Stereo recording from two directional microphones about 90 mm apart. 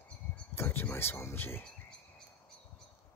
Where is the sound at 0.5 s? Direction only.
25° left (ahead or behind).